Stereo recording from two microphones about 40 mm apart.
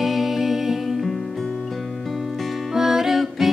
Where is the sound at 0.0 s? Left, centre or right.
Centre.